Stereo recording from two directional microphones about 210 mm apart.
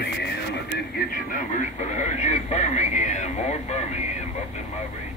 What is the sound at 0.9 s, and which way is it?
Speech, 40° left (ahead or behind).